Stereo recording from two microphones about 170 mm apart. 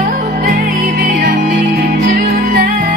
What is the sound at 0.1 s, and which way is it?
Music, 55° right (ahead or behind).